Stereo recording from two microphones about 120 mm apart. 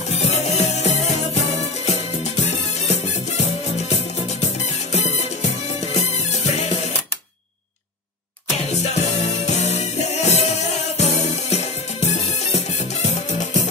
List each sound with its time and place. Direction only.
0.1 s music: 65° left (ahead or behind)
5.8 s music: 65° left (ahead or behind)
8.6 s music: 65° left (ahead or behind)